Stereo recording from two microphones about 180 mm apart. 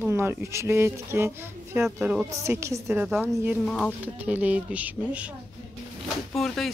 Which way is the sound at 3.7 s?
5° left (ahead or behind).